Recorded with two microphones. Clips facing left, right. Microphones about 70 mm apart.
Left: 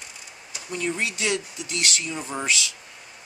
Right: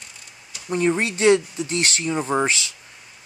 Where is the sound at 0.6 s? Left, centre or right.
Right.